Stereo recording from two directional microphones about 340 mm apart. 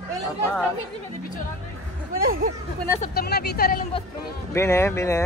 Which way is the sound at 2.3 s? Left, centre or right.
Right.